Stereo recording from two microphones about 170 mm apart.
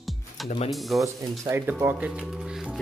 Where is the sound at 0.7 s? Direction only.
Centre (ahead or behind).